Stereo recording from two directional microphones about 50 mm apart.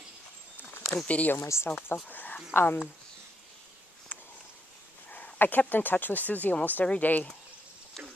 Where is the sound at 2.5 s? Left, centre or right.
Left.